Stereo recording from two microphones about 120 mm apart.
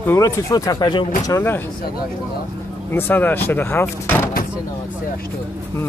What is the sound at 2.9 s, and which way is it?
Speech, 15° left (ahead or behind).